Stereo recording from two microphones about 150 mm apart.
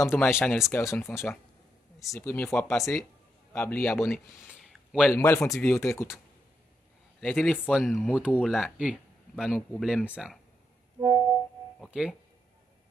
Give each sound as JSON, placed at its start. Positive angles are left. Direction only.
{"t": 0.0, "sound": "speech", "side_deg": 15}
{"t": 4.1, "sound": "a sound", "side_deg": 0}
{"t": 5.0, "sound": "speech", "side_deg": 15}
{"t": 7.2, "sound": "speech", "side_deg": 10}
{"t": 7.7, "sound": "speech", "side_deg": -5}
{"t": 11.8, "sound": "speech", "side_deg": 0}